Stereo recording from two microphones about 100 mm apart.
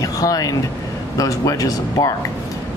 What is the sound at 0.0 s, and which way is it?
Vehicle, 35° left (ahead or behind).